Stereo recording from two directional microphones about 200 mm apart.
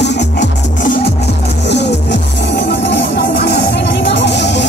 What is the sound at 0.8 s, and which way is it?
Music, 50° left (ahead or behind).